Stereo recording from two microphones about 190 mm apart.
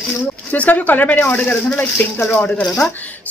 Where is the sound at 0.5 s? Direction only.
10° left (ahead or behind).